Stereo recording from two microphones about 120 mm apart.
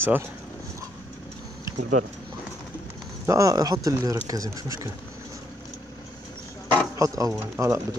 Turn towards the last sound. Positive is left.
turn(degrees=-30)  # may be behind; listen again after turning